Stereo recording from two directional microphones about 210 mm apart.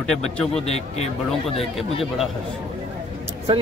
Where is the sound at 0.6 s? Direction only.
30° left (ahead or behind).